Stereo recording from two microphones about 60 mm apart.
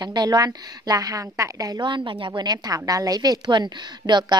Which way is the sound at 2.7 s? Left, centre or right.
Right.